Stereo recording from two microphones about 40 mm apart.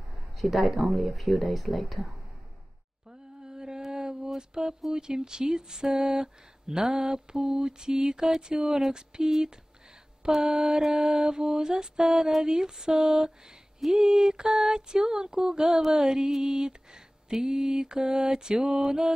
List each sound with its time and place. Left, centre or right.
0.4 s speech: centre
3.1 s mantra: centre
4.4 s a sound: centre
4.9 s speech: centre